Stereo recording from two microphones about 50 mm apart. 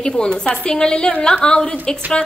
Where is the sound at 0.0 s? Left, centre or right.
Centre.